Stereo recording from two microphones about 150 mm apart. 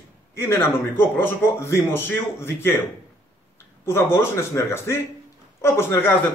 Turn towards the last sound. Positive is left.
turn(degrees=15)  # may be behind; listen again after turning